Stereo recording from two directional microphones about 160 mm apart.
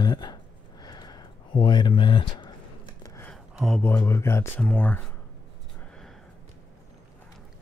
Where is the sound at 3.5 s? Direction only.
Centre (ahead or behind).